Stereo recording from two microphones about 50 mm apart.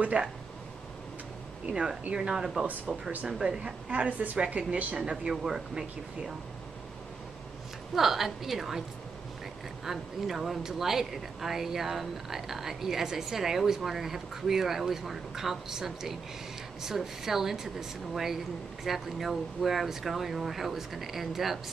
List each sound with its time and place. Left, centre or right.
0.2 s a woman's voice: centre
1.7 s a woman's voice: centre
5.3 s speech: centre
7.9 s speech: centre
9.8 s speech: centre